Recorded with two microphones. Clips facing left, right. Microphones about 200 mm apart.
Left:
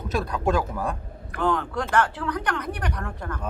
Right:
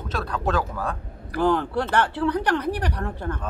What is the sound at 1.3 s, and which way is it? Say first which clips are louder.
Speech: right 4 dB; 35° right (ahead or behind).